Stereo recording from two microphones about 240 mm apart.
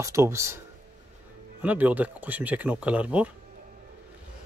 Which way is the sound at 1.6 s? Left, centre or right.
Centre.